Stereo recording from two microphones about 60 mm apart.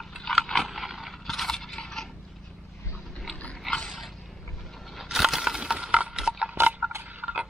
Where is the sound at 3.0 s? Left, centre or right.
Centre; by 7.3 s right.